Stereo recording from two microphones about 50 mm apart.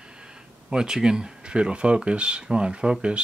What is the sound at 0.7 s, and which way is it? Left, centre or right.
Speech, centre.